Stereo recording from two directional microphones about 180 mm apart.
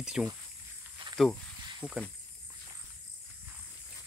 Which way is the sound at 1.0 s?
30° right (ahead or behind).